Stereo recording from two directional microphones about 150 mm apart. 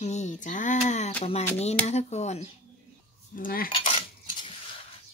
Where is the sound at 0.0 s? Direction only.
50° left (ahead or behind).